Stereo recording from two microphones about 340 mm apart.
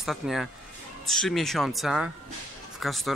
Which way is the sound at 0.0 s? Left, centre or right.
Centre.